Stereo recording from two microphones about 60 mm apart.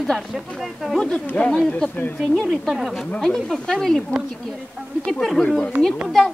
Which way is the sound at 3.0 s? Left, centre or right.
Centre.